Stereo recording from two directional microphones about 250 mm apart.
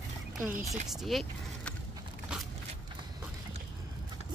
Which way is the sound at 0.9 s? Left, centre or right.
Centre.